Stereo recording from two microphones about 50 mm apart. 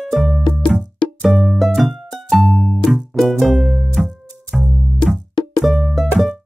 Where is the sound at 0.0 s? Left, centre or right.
Centre.